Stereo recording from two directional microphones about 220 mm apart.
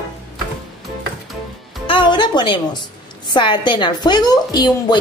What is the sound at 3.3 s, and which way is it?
A woman's voice, 20° left (ahead or behind).